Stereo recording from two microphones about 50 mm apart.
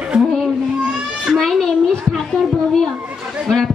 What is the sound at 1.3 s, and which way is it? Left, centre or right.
A child's voice, centre.